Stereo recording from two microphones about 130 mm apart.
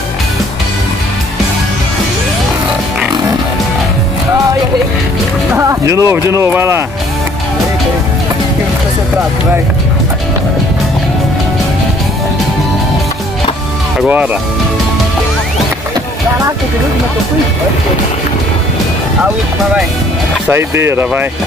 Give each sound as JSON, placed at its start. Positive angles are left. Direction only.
{"t": 5.6, "sound": "speech", "side_deg": -20}
{"t": 13.9, "sound": "speech", "side_deg": -10}
{"t": 20.4, "sound": "speech", "side_deg": -20}